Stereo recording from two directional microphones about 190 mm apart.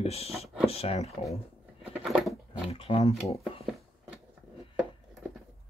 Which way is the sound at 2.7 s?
30° left (ahead or behind).